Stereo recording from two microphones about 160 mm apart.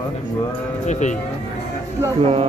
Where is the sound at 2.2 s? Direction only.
40° right (ahead or behind).